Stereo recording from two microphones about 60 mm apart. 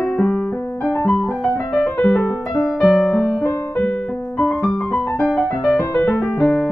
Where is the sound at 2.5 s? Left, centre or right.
Centre.